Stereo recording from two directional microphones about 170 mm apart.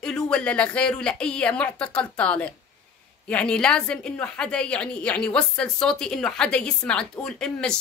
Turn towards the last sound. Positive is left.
turn(degrees=5)  # may be behind; listen again after turning